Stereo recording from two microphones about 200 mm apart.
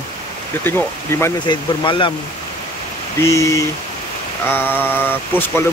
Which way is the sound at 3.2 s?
15° left (ahead or behind).